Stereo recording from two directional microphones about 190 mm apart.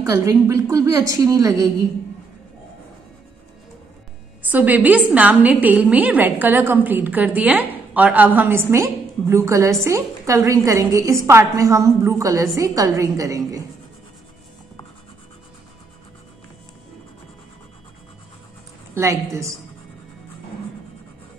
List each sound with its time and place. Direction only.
0.0 s a woman's voice: 20° right (ahead or behind)
4.4 s a woman's voice: 10° right (ahead or behind)
18.9 s a woman's voice: 15° right (ahead or behind)